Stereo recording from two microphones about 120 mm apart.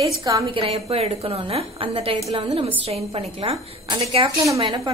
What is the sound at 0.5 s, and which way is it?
A woman's voice, 50° right (ahead or behind).